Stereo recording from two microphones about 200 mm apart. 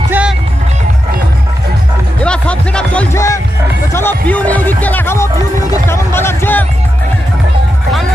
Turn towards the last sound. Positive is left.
turn(degrees=10)  # may be behind; listen again after turning